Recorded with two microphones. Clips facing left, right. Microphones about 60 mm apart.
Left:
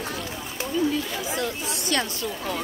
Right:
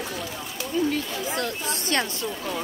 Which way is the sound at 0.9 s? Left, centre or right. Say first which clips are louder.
Even; right.